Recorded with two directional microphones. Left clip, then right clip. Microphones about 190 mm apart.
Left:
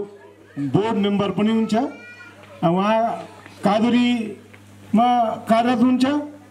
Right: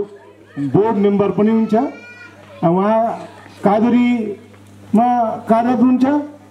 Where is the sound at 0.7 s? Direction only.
25° left (ahead or behind).